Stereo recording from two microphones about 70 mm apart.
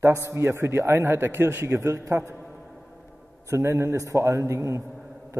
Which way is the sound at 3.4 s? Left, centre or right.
Right.